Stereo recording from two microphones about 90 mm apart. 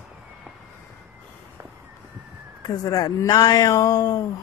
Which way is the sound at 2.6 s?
45° left (ahead or behind).